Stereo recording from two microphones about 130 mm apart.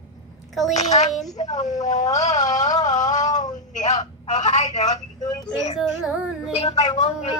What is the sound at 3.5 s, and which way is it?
Speech, 70° left (ahead or behind).